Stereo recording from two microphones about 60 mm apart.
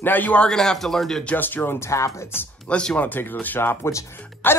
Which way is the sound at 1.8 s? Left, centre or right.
Left.